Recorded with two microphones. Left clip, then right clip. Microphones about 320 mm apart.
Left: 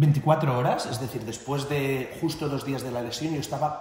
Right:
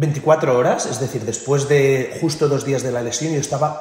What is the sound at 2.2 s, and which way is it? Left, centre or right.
Speech, right.